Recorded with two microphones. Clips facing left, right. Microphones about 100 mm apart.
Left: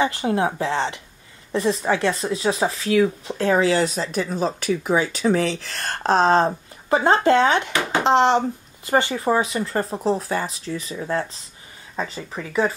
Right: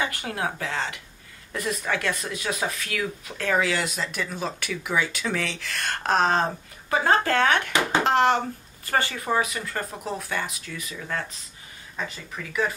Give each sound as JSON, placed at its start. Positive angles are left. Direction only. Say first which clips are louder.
{"t": 0.0, "sound": "speech", "louder": "left 8 dB", "side_deg": 25}